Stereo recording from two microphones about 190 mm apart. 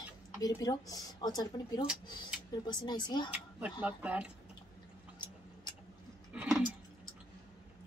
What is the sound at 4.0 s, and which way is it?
Speech, 5° right (ahead or behind).